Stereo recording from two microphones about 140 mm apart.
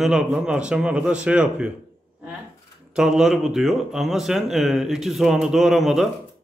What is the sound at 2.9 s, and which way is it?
A man's voice, 5° right (ahead or behind).